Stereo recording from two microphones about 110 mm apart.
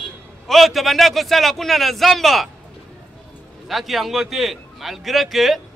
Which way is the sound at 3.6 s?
Centre (ahead or behind).